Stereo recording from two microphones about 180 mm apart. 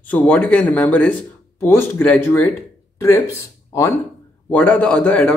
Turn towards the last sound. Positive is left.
turn(degrees=5)  # may be behind; listen again after turning